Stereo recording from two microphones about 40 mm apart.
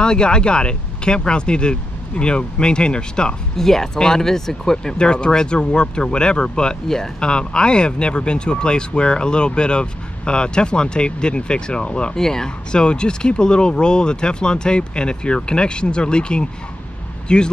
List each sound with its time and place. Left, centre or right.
0.0 s speech: left
3.5 s speech: centre
12.2 s speech: centre
12.8 s speech: left